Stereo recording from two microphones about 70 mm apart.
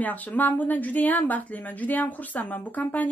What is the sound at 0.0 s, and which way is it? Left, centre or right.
Speech, left.